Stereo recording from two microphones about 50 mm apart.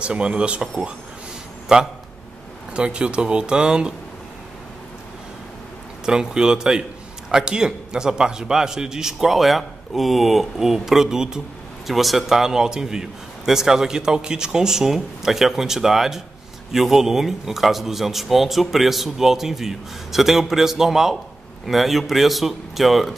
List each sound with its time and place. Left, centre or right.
0.0 s speech: centre
1.7 s a man's voice: right
6.0 s a man's voice: centre
11.9 s a man's voice: centre